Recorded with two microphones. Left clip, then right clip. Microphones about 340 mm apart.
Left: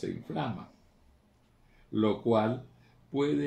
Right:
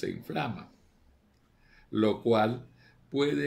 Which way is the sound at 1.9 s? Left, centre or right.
Right.